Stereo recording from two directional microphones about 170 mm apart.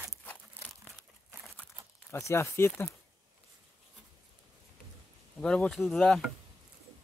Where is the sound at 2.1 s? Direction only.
15° left (ahead or behind).